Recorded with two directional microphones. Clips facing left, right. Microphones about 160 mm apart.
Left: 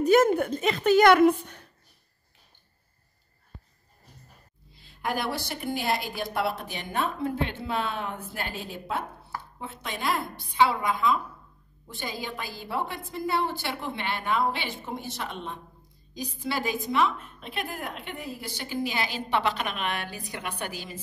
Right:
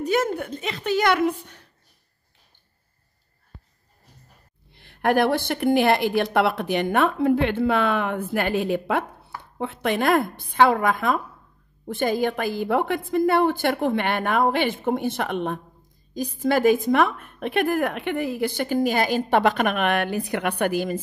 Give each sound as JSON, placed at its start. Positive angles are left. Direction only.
{"t": 0.0, "sound": "a woman's voice", "side_deg": 45}
{"t": 4.7, "sound": "a woman's voice", "side_deg": -65}
{"t": 16.2, "sound": "a woman's voice", "side_deg": -50}